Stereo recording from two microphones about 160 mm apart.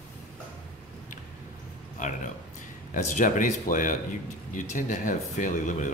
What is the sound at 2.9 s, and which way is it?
Speech, 50° left (ahead or behind).